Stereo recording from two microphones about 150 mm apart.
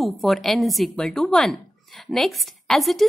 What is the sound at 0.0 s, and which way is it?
Speech, centre (ahead or behind).